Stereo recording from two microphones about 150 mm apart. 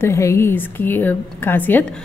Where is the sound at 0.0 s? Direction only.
20° left (ahead or behind).